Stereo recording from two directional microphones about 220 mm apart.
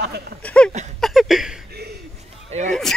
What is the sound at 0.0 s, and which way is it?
Speech, 50° right (ahead or behind).